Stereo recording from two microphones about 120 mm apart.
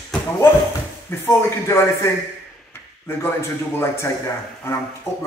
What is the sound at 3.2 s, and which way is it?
Speech, 20° left (ahead or behind).